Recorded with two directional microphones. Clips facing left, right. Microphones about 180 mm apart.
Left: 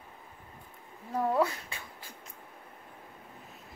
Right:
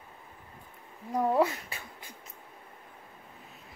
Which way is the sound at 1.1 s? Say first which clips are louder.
Right 2 dB; 20° right (ahead or behind).